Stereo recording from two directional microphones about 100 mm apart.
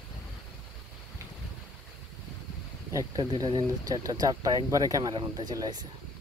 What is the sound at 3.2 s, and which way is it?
Speech, 45° right (ahead or behind).